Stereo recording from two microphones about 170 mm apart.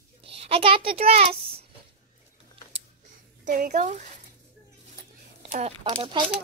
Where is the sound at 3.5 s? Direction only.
50° right (ahead or behind).